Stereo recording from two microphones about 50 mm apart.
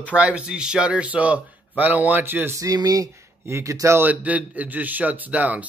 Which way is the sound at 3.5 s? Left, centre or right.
Right.